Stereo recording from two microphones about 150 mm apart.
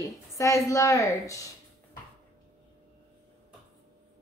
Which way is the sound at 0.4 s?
20° left (ahead or behind).